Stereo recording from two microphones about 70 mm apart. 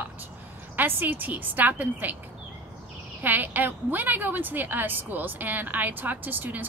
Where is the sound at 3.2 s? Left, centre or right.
Right.